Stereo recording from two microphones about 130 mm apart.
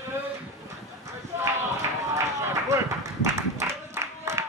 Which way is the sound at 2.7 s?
25° right (ahead or behind).